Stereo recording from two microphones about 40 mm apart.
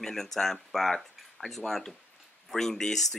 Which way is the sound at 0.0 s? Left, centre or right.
Centre.